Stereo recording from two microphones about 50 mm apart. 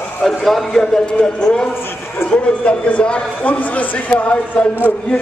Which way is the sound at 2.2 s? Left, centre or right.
Left.